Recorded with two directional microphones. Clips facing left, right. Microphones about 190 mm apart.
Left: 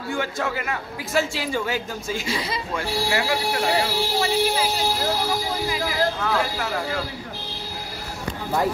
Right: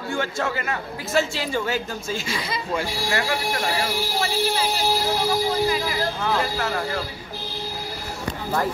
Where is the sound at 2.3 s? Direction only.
30° left (ahead or behind).